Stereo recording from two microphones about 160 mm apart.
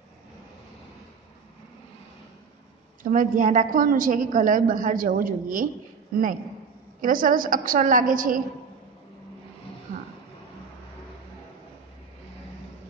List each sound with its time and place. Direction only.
3.0 s a woman's voice: 55° right (ahead or behind)
7.0 s a woman's voice: 60° right (ahead or behind)